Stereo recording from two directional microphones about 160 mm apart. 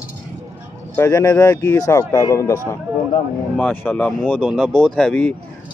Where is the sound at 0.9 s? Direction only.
15° left (ahead or behind).